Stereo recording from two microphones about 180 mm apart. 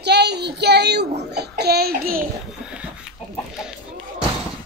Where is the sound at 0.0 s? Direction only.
65° right (ahead or behind).